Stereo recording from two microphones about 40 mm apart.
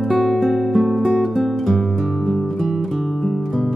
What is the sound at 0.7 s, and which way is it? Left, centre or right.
Music, centre.